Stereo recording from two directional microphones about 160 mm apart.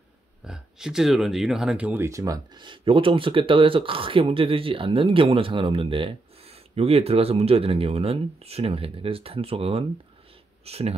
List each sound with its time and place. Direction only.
0.4 s speech: 5° right (ahead or behind); by 11.0 s 40° right (ahead or behind)